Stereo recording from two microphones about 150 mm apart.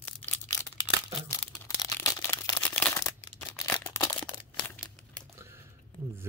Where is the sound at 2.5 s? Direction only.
10° left (ahead or behind).